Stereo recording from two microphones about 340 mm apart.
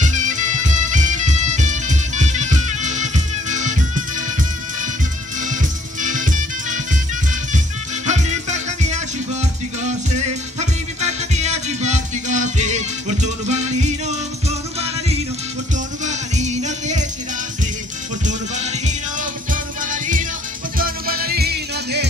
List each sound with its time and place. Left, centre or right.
0.0 s music: right
8.1 s music: centre
18.2 s music: right